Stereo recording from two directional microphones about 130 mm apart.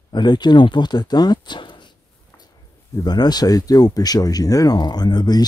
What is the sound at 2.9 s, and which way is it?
Speech, 30° left (ahead or behind).